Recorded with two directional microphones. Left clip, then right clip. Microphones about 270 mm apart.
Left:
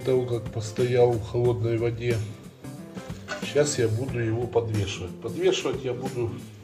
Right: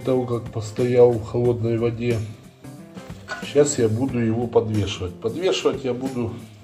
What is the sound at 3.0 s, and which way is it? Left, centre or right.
Music, centre.